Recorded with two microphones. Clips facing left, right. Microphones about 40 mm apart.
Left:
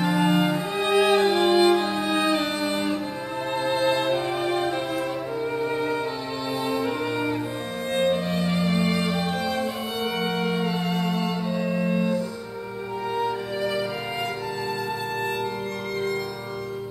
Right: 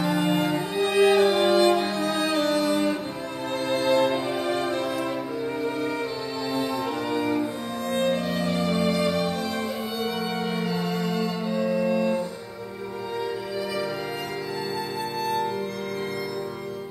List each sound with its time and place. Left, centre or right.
0.0 s music: left
8.0 s music: left
10.6 s music: left
11.6 s music: left